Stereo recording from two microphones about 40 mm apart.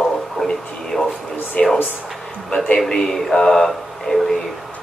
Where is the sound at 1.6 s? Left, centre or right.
Left.